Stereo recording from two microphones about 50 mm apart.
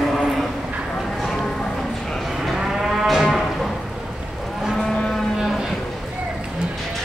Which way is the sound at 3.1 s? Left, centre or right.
Centre.